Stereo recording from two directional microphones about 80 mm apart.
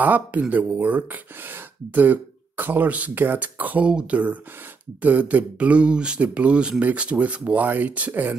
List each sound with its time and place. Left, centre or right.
0.0 s speech: right